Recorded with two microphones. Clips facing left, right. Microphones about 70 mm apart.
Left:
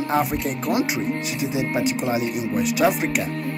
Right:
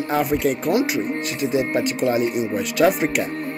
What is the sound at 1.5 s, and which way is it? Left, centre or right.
Speech, centre.